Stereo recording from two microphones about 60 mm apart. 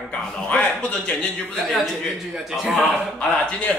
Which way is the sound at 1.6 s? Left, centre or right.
Centre.